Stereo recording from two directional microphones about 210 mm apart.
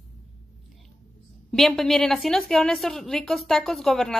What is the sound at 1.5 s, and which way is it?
A woman's voice, centre (ahead or behind).